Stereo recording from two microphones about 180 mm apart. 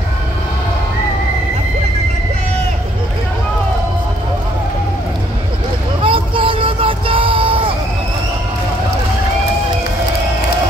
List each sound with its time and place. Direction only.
6.0 s vehicle: 30° right (ahead or behind)